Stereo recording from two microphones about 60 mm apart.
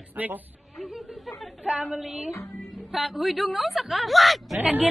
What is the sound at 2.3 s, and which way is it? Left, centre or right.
Speech, left.